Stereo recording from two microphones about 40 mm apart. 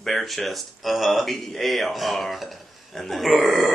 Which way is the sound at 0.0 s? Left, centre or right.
Centre.